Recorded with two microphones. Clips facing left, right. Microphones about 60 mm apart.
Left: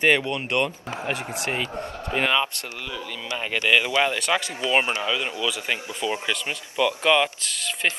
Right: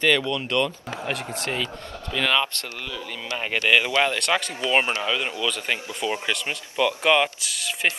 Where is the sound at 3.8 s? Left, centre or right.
Centre.